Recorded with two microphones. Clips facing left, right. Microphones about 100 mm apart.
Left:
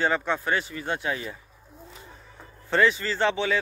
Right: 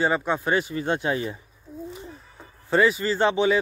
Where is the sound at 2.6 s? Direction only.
10° right (ahead or behind).